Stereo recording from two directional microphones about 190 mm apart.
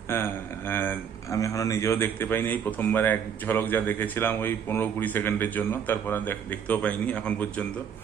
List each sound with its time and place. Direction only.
0.1 s speech: 10° left (ahead or behind)